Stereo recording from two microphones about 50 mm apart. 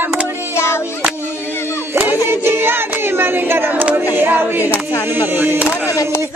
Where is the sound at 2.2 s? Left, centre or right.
Right.